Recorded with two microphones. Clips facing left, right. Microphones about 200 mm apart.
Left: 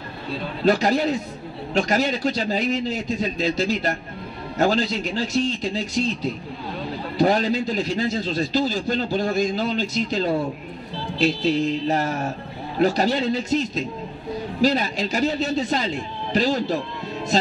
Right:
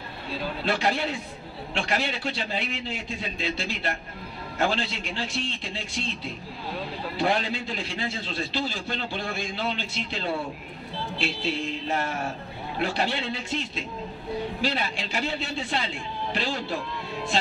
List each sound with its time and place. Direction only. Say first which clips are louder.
0.7 s a man's voice: left 9 dB; 40° left (ahead or behind)